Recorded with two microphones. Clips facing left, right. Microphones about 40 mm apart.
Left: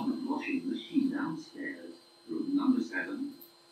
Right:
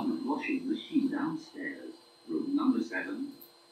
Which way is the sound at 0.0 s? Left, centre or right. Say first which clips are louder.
Right 1 dB; centre.